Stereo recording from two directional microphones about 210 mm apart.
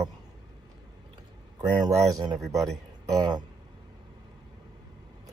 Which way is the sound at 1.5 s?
15° right (ahead or behind).